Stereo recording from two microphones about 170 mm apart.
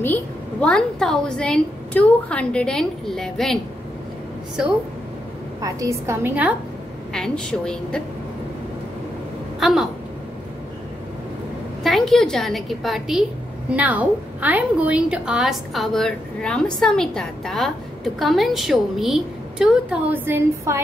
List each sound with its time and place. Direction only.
0.0 s a woman's voice: 10° left (ahead or behind)
5.6 s a woman's voice: 20° right (ahead or behind)
7.2 s a woman's voice: 5° left (ahead or behind)
9.6 s a sound: centre (ahead or behind)
11.8 s a woman's voice: centre (ahead or behind)